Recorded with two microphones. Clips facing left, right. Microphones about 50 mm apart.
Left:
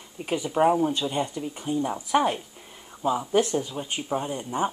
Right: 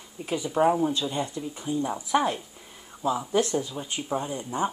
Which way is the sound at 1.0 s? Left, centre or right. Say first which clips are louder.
Left 2 dB; left.